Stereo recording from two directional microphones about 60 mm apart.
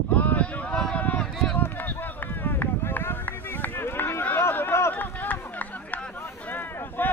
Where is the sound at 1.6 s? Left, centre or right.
Left.